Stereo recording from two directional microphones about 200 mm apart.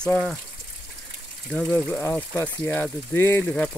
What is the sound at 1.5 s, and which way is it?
Speech, 5° left (ahead or behind).